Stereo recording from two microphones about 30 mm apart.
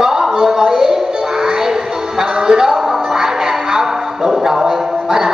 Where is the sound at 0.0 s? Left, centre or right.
Centre.